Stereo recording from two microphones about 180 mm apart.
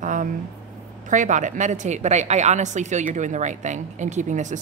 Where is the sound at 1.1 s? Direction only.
45° right (ahead or behind).